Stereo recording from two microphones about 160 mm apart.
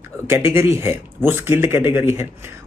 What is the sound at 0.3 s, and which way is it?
Speech, 15° right (ahead or behind).